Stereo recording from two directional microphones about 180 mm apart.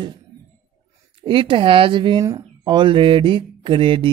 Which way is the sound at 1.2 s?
30° right (ahead or behind).